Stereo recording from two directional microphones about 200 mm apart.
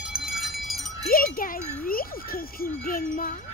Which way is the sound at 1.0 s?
45° left (ahead or behind).